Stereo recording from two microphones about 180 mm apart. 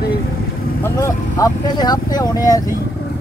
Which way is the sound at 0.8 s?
15° left (ahead or behind).